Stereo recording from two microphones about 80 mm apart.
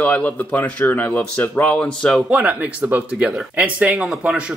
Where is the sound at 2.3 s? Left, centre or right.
Centre.